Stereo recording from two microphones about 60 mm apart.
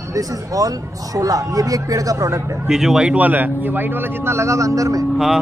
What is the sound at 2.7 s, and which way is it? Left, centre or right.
Speech, centre.